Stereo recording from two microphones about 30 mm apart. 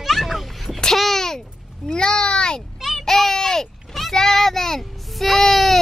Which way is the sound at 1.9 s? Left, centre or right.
Left.